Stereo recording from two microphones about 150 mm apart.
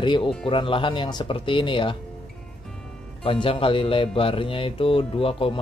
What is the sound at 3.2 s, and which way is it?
Speech, 35° left (ahead or behind).